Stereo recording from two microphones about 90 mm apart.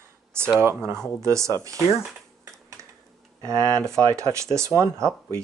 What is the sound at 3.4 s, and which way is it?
Speech, 40° right (ahead or behind).